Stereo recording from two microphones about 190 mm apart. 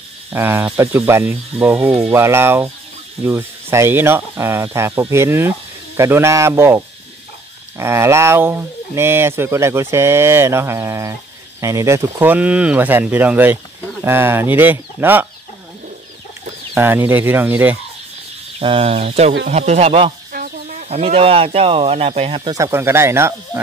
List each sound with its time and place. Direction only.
0.3 s speech: 10° right (ahead or behind)
16.7 s speech: 10° right (ahead or behind)
18.6 s speech: 30° right (ahead or behind)
20.3 s chicken: 50° right (ahead or behind)
20.9 s speech: 30° right (ahead or behind)
22.6 s speech: 15° right (ahead or behind)